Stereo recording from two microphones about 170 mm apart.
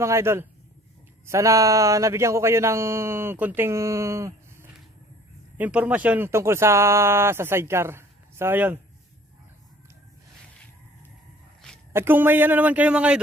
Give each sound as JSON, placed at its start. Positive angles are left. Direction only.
{"t": 0.0, "sound": "speech", "side_deg": -15}
{"t": 11.9, "sound": "speech", "side_deg": -10}